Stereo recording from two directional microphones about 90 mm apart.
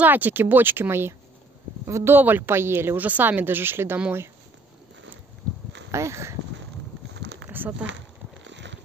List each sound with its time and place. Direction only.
0.0 s a woman's voice: 20° right (ahead or behind)
5.9 s speech: 30° right (ahead or behind)
7.4 s a sound: 20° right (ahead or behind)